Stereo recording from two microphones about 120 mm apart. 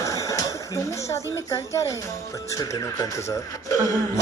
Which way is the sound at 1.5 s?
25° left (ahead or behind).